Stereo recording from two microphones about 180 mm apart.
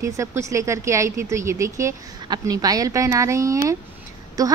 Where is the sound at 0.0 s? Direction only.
15° right (ahead or behind).